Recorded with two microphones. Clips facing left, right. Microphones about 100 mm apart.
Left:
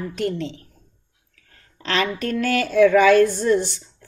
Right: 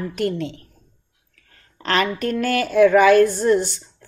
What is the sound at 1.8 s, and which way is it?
A woman's voice, 50° right (ahead or behind).